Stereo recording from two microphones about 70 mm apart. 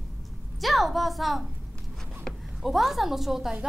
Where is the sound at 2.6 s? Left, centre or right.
Centre.